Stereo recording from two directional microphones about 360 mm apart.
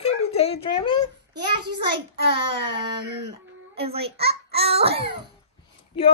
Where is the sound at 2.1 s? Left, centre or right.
Centre.